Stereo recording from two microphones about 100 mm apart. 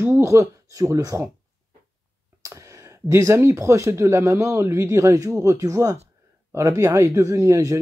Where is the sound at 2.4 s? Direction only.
30° right (ahead or behind).